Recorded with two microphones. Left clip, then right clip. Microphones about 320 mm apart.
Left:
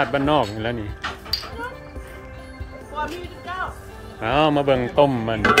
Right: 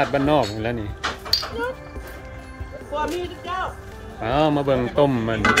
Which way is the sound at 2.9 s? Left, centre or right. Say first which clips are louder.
Right 3 dB; right.